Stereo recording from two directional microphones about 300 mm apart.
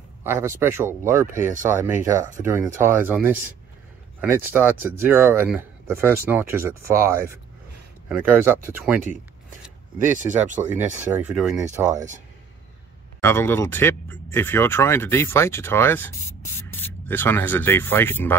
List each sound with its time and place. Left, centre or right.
0.2 s speech: centre
1.3 s speech: right
1.7 s speech: centre
10.0 s speech: right
11.3 s speech: centre
13.2 s speech: centre